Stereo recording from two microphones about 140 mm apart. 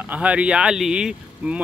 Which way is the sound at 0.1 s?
10° right (ahead or behind).